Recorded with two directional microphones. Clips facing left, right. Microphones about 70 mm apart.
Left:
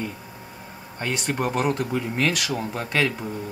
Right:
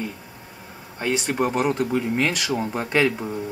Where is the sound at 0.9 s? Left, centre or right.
Centre.